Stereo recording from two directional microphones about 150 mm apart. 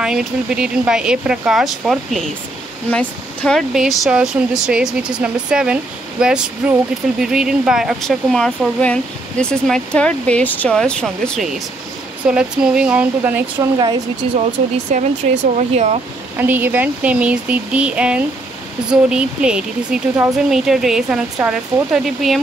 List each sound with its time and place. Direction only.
0.0 s speech: 5° right (ahead or behind)
13.6 s speech: 30° right (ahead or behind)
14.9 s speech: 50° right (ahead or behind)
16.3 s speech: 10° right (ahead or behind)